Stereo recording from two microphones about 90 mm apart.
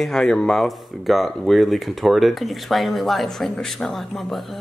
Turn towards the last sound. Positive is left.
turn(degrees=0)  # may be behind; listen again after turning